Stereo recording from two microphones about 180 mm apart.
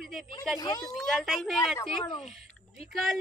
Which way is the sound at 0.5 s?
20° left (ahead or behind).